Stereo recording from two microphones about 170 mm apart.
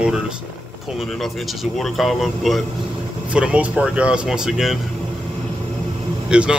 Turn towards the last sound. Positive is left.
turn(degrees=-5)  # may be behind; listen again after turning